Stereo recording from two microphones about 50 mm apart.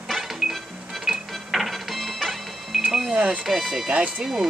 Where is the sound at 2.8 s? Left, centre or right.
Centre.